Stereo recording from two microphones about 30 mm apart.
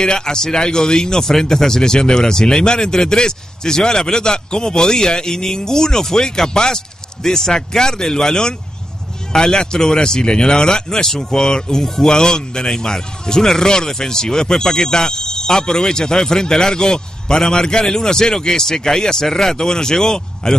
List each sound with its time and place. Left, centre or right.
0.0 s speech: left